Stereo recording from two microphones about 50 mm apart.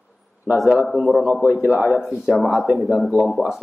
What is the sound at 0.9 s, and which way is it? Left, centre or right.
Speech, centre.